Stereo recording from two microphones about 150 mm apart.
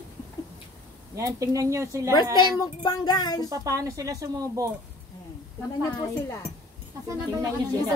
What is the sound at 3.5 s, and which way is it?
Speech, 25° right (ahead or behind).